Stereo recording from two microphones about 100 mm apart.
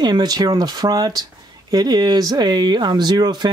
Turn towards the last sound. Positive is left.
turn(degrees=-45)  # may be behind; listen again after turning